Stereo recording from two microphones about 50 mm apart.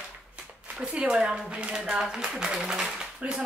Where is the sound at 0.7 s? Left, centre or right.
Centre.